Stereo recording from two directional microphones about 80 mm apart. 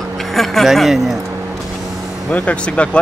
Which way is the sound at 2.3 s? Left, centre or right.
Centre.